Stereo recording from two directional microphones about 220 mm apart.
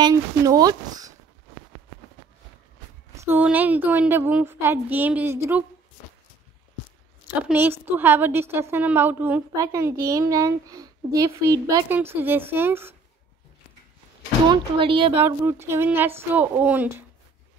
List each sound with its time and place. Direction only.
0.0 s a woman's voice: 15° right (ahead or behind)
3.2 s a woman's voice: 10° right (ahead or behind)
7.4 s a woman's voice: 10° right (ahead or behind)
14.5 s speech: 25° right (ahead or behind)
15.1 s a woman's voice: 10° right (ahead or behind)